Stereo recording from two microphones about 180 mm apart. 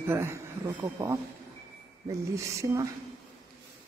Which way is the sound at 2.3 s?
15° right (ahead or behind).